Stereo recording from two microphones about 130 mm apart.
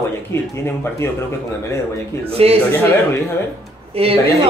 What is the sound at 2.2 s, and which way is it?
Speech, 50° right (ahead or behind).